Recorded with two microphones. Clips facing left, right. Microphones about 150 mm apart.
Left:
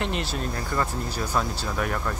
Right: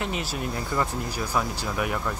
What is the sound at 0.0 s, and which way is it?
Speech, 5° right (ahead or behind).